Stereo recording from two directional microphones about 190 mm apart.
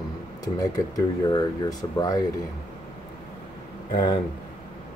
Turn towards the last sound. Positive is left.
turn(degrees=25)  # may be behind; listen again after turning